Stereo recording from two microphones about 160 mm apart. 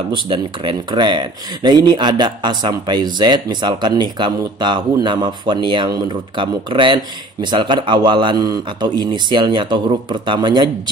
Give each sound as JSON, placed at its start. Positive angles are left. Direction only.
{"t": 0.1, "sound": "speech", "side_deg": -30}